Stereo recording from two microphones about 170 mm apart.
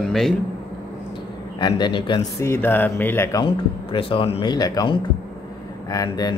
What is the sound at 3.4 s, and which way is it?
Speech, 30° left (ahead or behind).